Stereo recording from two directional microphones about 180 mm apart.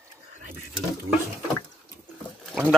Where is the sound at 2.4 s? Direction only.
5° right (ahead or behind).